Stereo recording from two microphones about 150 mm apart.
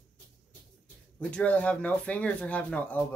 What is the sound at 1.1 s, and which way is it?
Speech, 10° left (ahead or behind).